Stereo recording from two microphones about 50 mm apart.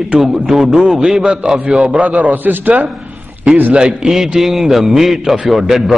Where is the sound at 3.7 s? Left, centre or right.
Centre.